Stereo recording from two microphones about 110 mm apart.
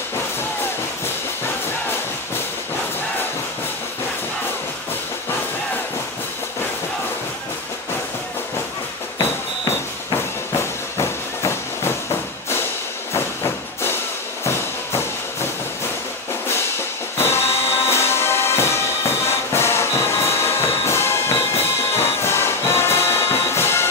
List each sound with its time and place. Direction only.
10.5 s train: 25° left (ahead or behind)
13.1 s hiss: 25° left (ahead or behind)
14.4 s music: 25° left (ahead or behind)
17.2 s music: 20° left (ahead or behind)